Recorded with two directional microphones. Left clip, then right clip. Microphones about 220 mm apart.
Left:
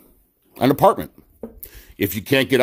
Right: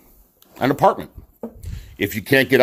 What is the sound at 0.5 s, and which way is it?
Speech, 35° left (ahead or behind).